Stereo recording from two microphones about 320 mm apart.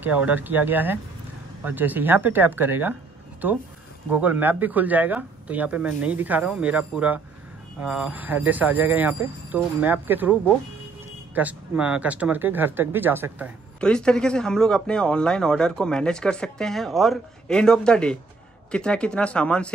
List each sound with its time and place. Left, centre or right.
0.0 s speech: centre
11.3 s speech: centre